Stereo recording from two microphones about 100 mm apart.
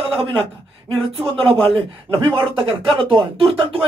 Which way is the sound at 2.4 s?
60° right (ahead or behind).